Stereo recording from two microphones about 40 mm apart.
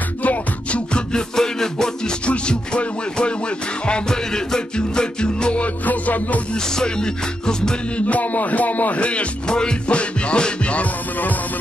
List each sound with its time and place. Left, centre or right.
0.2 s music: left
1.1 s music: centre
4.1 s music: centre
5.6 s speech: left
6.5 s music: centre
8.1 s speech: left
9.0 s music: left